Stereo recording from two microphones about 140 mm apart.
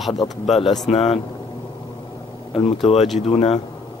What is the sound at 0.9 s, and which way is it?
Speech, 50° left (ahead or behind).